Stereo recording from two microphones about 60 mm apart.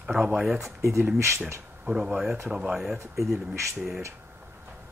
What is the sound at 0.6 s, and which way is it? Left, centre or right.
Speech, right.